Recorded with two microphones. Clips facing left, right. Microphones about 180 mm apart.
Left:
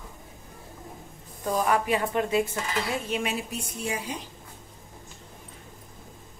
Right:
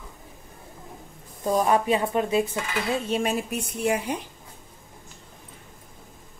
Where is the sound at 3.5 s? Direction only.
60° right (ahead or behind).